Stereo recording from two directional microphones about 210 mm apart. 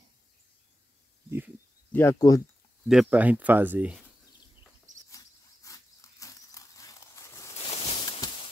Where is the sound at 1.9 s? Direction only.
10° left (ahead or behind).